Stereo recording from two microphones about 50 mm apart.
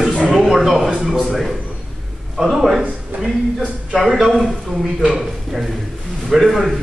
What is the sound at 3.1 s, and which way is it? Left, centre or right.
Speech, right.